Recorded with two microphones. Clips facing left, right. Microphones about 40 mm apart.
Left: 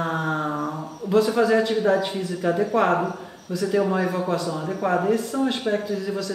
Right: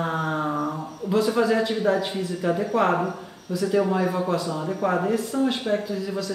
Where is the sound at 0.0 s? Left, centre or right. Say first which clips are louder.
Left 1 dB; centre.